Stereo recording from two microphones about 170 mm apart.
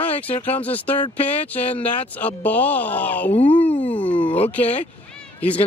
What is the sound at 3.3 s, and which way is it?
Speech, 35° left (ahead or behind).